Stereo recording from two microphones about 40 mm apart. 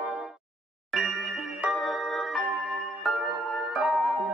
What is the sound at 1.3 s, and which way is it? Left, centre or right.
Music, centre.